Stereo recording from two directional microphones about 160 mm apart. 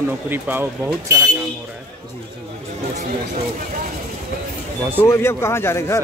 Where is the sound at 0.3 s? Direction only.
15° right (ahead or behind).